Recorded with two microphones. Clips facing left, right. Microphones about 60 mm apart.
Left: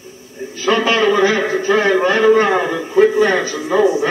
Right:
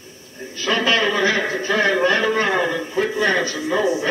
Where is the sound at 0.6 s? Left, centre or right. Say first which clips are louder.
Left 5 dB; left.